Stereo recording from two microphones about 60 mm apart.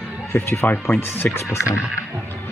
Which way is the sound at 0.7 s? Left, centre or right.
Left.